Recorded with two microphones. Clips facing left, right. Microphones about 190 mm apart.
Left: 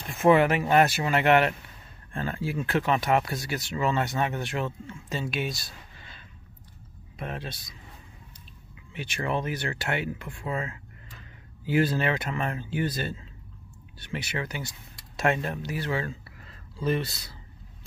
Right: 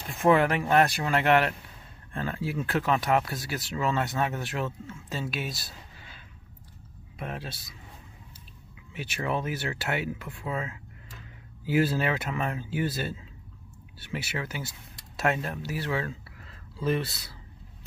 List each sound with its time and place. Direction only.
0.0 s speech: centre (ahead or behind)
8.9 s speech: 5° right (ahead or behind)